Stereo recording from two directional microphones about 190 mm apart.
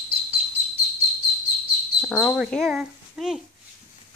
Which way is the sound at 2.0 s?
Centre (ahead or behind).